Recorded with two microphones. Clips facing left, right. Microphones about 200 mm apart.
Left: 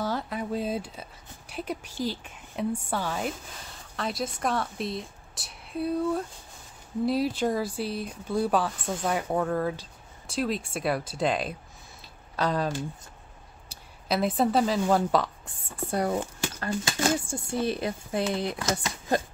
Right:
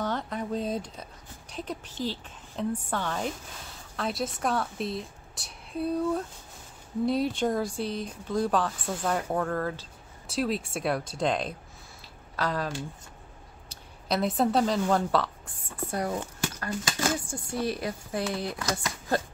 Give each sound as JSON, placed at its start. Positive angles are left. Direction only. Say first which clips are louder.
{"t": 0.0, "sound": "a sound", "louder": "left 1 dB", "side_deg": 5}
{"t": 1.5, "sound": "a woman's voice", "louder": "left 2 dB", "side_deg": 10}
{"t": 10.2, "sound": "a woman's voice", "louder": "even", "side_deg": 0}
{"t": 12.4, "sound": "speech", "louder": "left 3 dB", "side_deg": 20}
{"t": 13.7, "sound": "a woman's voice", "louder": "left 1 dB", "side_deg": 5}
{"t": 15.9, "sound": "speech", "louder": "left 4 dB", "side_deg": 30}